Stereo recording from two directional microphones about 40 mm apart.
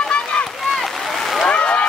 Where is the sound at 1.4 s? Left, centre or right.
Left.